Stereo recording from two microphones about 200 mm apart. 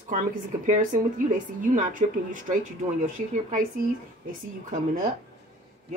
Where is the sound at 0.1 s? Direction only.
40° right (ahead or behind).